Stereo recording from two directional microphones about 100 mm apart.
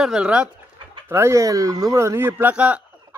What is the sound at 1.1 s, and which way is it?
Speech, 30° right (ahead or behind).